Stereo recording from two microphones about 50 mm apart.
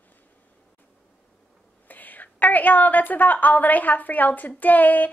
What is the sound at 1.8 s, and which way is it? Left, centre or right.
A woman's voice, left.